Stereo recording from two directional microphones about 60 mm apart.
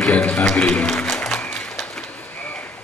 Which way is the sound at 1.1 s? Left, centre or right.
Centre.